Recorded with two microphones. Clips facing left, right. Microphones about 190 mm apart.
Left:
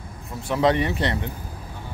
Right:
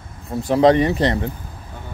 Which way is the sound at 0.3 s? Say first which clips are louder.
Right 7 dB; 35° right (ahead or behind).